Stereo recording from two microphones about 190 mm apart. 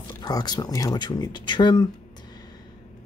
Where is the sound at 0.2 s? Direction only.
20° left (ahead or behind).